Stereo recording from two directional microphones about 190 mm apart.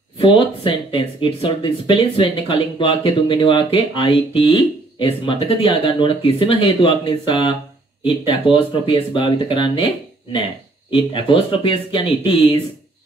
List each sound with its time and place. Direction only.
0.2 s speech: 25° left (ahead or behind)
10.9 s speech: 25° left (ahead or behind)